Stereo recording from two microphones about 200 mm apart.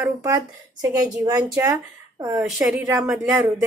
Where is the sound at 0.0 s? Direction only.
15° right (ahead or behind).